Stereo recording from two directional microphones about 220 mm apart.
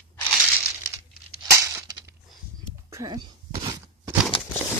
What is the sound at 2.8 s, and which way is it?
Speech, 15° right (ahead or behind).